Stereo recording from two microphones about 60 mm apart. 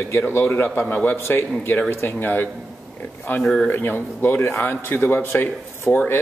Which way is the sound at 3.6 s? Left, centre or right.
Left.